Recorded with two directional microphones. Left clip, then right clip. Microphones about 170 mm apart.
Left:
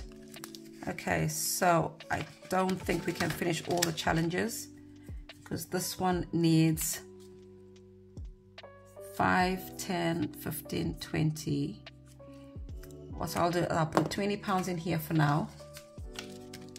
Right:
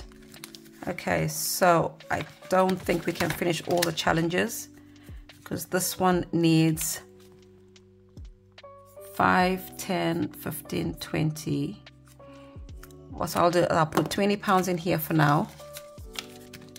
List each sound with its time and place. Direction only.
0.5 s speech: 20° right (ahead or behind)
9.1 s speech: 25° right (ahead or behind)
13.2 s speech: 30° right (ahead or behind)